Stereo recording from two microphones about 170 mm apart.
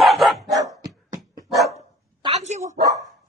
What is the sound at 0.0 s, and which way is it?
Dog, centre (ahead or behind).